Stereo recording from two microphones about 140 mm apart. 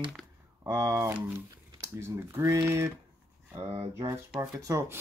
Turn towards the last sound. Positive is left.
turn(degrees=-20)  # may be behind; listen again after turning